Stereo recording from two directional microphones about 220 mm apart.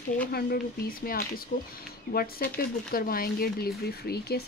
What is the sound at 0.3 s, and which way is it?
Speech, 45° left (ahead or behind).